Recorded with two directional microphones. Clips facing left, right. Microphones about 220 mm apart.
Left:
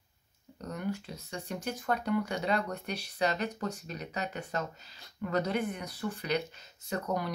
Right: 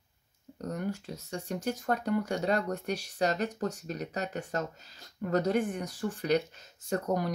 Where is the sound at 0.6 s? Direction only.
45° right (ahead or behind).